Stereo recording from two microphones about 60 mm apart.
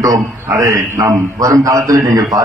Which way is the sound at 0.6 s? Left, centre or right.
Right.